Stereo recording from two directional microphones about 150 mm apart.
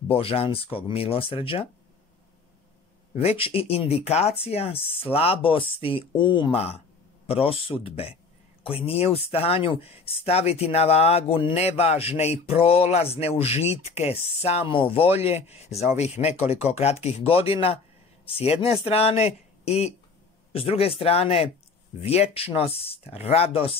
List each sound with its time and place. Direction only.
0.1 s speech: 40° left (ahead or behind)
3.2 s speech: 40° left (ahead or behind)